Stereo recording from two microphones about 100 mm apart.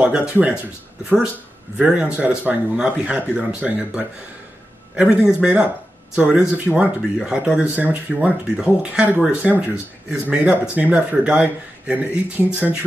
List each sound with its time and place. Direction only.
0.0 s speech: 10° right (ahead or behind)
1.8 s speech: 10° right (ahead or behind)